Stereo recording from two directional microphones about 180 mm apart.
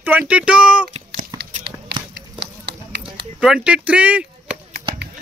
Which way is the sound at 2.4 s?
70° right (ahead or behind).